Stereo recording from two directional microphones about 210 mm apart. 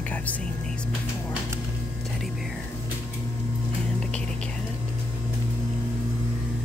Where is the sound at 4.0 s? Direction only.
5° left (ahead or behind).